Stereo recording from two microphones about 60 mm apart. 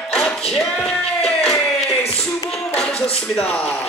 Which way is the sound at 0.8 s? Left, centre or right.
Centre.